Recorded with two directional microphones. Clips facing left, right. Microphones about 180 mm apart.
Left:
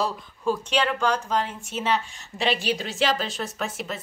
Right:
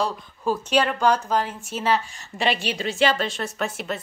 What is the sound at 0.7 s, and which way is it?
Speech, 40° right (ahead or behind).